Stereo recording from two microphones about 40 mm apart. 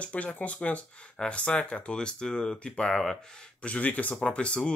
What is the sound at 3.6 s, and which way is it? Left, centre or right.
Speech, left.